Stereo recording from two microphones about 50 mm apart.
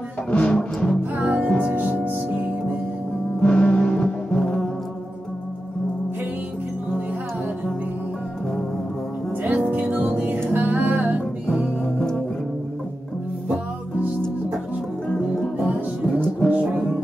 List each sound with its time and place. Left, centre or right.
0.3 s music: left
1.1 s music: right
3.3 s music: left
9.4 s music: right
15.0 s music: centre
16.5 s music: right